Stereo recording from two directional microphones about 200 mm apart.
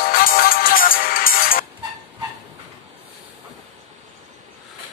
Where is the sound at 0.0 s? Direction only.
45° left (ahead or behind).